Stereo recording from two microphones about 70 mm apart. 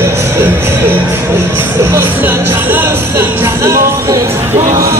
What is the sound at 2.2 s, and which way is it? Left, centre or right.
Music, right.